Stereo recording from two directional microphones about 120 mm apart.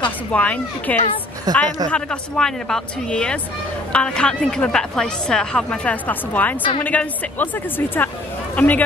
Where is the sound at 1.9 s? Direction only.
5° left (ahead or behind).